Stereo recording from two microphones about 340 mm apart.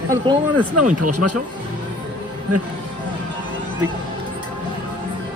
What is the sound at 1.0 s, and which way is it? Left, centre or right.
Speech, right.